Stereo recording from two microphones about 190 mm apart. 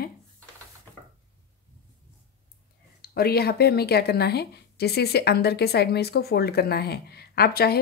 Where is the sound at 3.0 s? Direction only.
55° left (ahead or behind).